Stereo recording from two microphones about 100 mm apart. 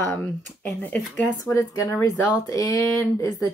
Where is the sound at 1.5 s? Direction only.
30° left (ahead or behind).